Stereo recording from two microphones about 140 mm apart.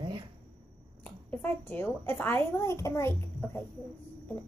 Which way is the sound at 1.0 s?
10° left (ahead or behind).